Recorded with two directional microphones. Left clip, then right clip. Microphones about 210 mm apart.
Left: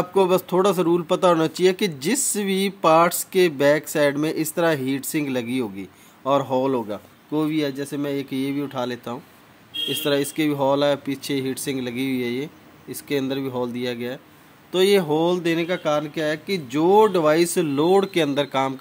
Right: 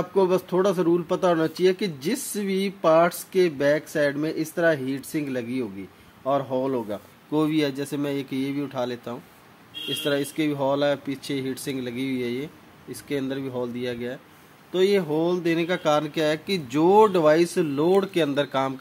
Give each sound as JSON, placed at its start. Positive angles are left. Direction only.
{"t": 0.0, "sound": "speech", "side_deg": 15}
{"t": 6.9, "sound": "speech", "side_deg": 0}